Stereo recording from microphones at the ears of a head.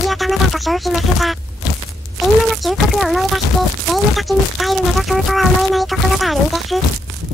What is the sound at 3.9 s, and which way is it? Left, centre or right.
Speech, centre.